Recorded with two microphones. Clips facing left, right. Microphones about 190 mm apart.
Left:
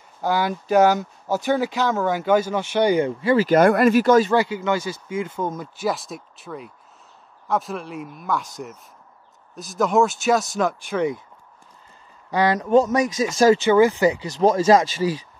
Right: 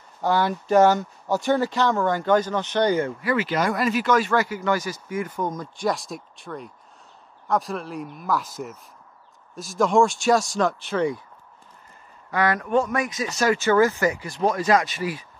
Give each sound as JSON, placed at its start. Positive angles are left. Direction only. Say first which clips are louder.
{"t": 0.2, "sound": "speech", "louder": "even", "side_deg": 0}
{"t": 3.2, "sound": "speech", "louder": "left 6 dB", "side_deg": 25}
{"t": 3.4, "sound": "speech", "louder": "left 8 dB", "side_deg": 55}
{"t": 4.0, "sound": "speech", "louder": "left 6 dB", "side_deg": 35}
{"t": 4.3, "sound": "speech", "louder": "left 2 dB", "side_deg": 25}
{"t": 5.5, "sound": "speech", "louder": "even", "side_deg": 5}
{"t": 10.9, "sound": "speech", "louder": "left 1 dB", "side_deg": 15}
{"t": 12.4, "sound": "speech", "louder": "left 5 dB", "side_deg": 20}
{"t": 13.7, "sound": "speech", "louder": "left 3 dB", "side_deg": 15}